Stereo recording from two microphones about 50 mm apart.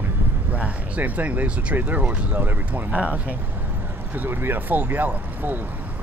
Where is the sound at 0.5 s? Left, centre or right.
Right.